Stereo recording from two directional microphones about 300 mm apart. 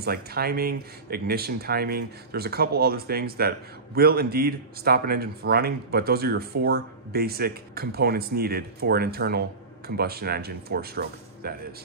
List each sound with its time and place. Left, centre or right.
0.0 s speech: right